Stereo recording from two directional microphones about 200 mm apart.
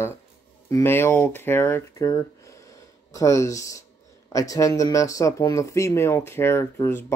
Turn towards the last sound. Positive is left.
turn(degrees=10)  # may be behind; listen again after turning